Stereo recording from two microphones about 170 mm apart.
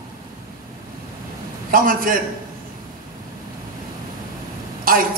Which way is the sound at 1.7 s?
55° right (ahead or behind).